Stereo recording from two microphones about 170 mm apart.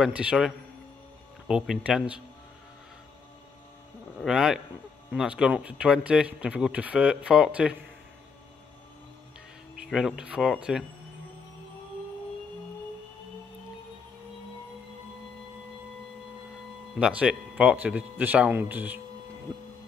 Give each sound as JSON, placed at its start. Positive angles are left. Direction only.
{"t": 0.0, "sound": "speech", "side_deg": -5}
{"t": 4.2, "sound": "speech", "side_deg": -5}
{"t": 9.8, "sound": "speech", "side_deg": -5}
{"t": 16.9, "sound": "speech", "side_deg": -5}
{"t": 19.5, "sound": "train", "side_deg": -15}